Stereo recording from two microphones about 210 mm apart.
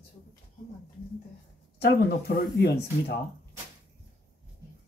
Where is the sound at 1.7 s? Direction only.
50° left (ahead or behind).